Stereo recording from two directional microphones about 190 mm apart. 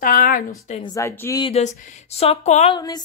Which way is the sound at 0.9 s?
15° left (ahead or behind).